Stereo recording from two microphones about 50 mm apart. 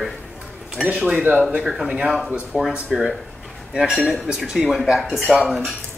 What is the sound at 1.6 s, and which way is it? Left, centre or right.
Speech, centre.